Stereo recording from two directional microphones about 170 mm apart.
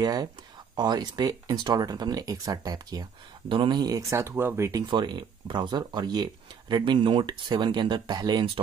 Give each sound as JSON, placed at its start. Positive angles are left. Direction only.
{"t": 0.0, "sound": "speech", "side_deg": -25}
{"t": 4.8, "sound": "speech", "side_deg": -25}